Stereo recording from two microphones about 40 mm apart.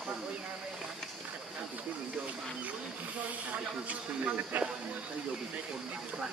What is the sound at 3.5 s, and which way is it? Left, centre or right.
Speech, right.